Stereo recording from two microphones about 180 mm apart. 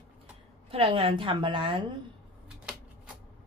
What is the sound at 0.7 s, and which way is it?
A woman's voice, 30° right (ahead or behind).